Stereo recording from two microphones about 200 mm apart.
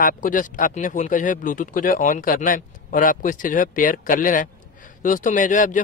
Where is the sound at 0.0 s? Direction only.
40° left (ahead or behind).